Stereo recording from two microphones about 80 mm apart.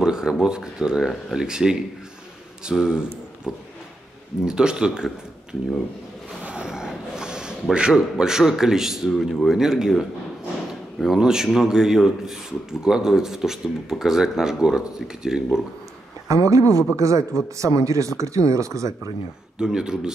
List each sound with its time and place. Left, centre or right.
0.0 s speech: centre
16.3 s speech: right
19.6 s speech: centre